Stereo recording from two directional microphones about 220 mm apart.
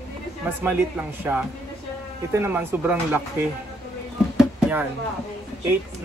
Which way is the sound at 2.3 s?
10° right (ahead or behind).